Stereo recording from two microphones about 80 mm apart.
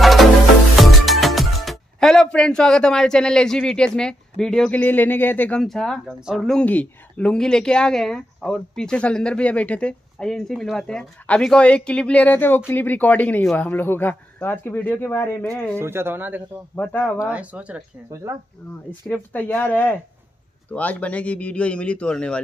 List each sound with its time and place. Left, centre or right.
0.0 s music: centre
1.0 s speech: centre; by 5.6 s left
5.6 s speech: centre
6.0 s speech: centre
6.6 s speech: centre
15.8 s speech: right
16.7 s speech: left
17.2 s speech: centre
18.9 s speech: left